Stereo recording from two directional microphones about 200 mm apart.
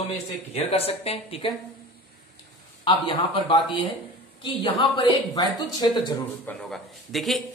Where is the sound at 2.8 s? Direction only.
25° left (ahead or behind).